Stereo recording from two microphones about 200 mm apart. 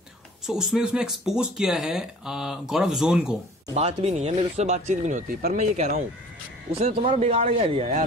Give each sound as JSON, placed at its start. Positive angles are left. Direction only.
{"t": 0.5, "sound": "speech", "side_deg": 0}
{"t": 3.7, "sound": "speech", "side_deg": -30}
{"t": 7.1, "sound": "speech", "side_deg": -30}